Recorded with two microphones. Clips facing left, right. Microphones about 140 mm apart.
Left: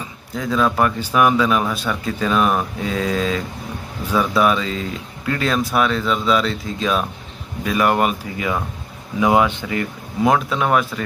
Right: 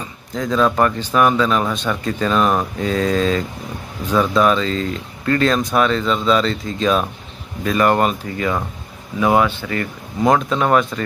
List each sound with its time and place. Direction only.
0.0 s speech: 5° left (ahead or behind)
10.2 s speech: 5° left (ahead or behind)